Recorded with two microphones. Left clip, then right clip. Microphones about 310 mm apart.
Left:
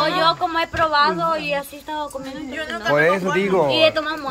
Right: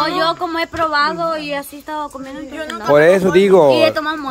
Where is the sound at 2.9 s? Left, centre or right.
Centre.